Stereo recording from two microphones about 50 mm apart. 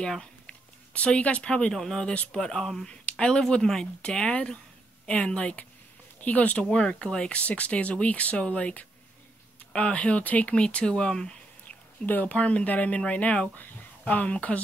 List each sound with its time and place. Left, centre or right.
0.9 s speech: left
1.7 s speech: centre
2.0 s speech: centre
12.1 s speech: left